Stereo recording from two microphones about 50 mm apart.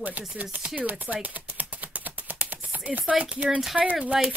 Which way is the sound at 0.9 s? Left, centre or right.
Right.